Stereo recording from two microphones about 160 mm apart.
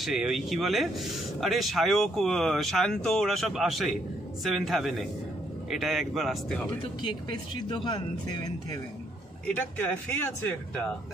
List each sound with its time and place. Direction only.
0.0 s speech: centre (ahead or behind)
6.8 s speech: 30° left (ahead or behind)
9.5 s speech: 10° left (ahead or behind)